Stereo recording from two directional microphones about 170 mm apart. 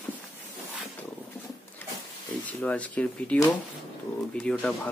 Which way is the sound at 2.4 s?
10° left (ahead or behind).